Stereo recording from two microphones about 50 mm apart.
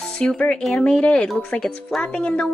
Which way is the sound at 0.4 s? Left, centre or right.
Centre.